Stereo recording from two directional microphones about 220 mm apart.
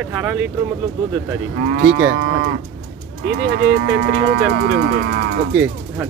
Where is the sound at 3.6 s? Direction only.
50° right (ahead or behind).